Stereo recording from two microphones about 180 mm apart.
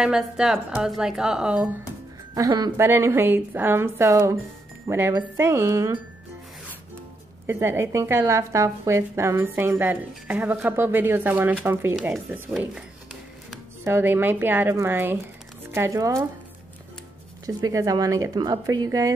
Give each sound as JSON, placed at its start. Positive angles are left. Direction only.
{"t": 0.0, "sound": "a woman's voice", "side_deg": -5}
{"t": 2.3, "sound": "a woman's voice", "side_deg": -20}
{"t": 7.4, "sound": "a woman's voice", "side_deg": -15}
{"t": 13.8, "sound": "a woman's voice", "side_deg": -15}
{"t": 17.5, "sound": "speech", "side_deg": -20}